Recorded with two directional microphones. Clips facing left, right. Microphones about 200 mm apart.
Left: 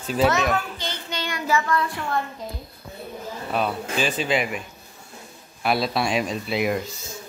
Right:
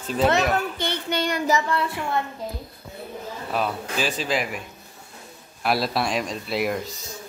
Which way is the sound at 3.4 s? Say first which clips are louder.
Left 1 dB; centre (ahead or behind).